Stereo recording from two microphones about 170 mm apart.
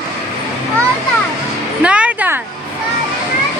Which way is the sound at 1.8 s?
5° right (ahead or behind).